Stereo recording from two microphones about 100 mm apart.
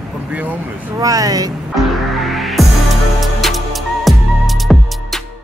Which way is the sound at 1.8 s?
Centre (ahead or behind).